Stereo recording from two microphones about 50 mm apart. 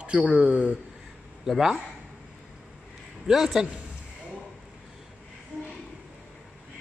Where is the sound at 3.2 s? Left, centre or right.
Centre.